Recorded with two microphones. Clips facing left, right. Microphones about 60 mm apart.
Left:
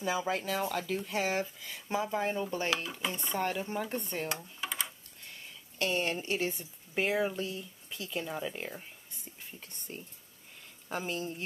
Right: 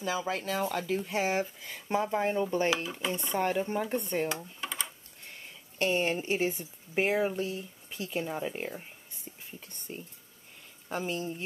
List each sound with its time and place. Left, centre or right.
0.0 s speech: centre
0.3 s a woman's voice: centre
1.9 s a woman's voice: centre
2.5 s speech: right
2.8 s speech: centre
3.3 s a woman's voice: centre
4.6 s a sound: centre
5.8 s a woman's voice: centre
8.6 s a sound: centre
9.9 s a woman's voice: centre